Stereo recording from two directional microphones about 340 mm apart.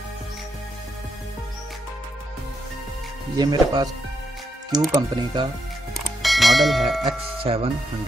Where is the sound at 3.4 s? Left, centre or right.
Centre.